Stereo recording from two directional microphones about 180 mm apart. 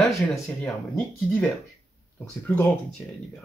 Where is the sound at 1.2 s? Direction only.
5° left (ahead or behind).